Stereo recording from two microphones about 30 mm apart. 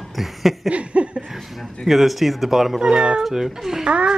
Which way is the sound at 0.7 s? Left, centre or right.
Right.